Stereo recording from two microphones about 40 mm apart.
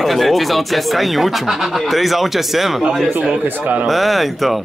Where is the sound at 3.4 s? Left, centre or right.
Right.